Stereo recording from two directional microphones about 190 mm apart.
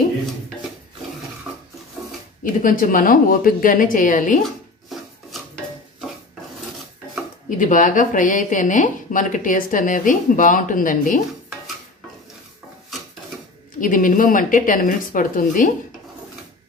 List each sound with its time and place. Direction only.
2.4 s speech: 45° left (ahead or behind)
4.4 s a sound: centre (ahead or behind)
7.4 s speech: 45° left (ahead or behind)
13.7 s speech: 45° left (ahead or behind)